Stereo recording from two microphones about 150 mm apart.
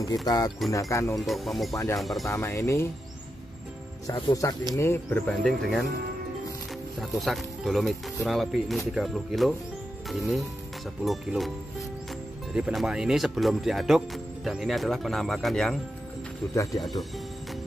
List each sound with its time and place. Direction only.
0.0 s speech: 25° left (ahead or behind)
1.2 s speech: centre (ahead or behind)
2.2 s speech: 20° left (ahead or behind)
4.1 s speech: 25° left (ahead or behind); by 5.9 s centre (ahead or behind)
7.0 s speech: centre (ahead or behind)
12.5 s speech: 5° right (ahead or behind)